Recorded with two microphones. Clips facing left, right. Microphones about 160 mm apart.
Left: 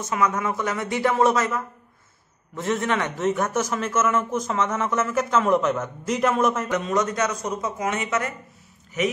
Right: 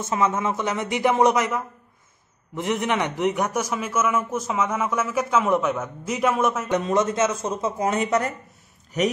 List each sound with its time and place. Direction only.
0.0 s a man's voice: 25° right (ahead or behind); by 6.7 s 5° right (ahead or behind)
6.9 s speech: 25° right (ahead or behind)